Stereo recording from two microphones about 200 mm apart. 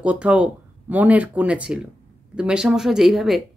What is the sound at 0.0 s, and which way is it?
Speech, 5° right (ahead or behind).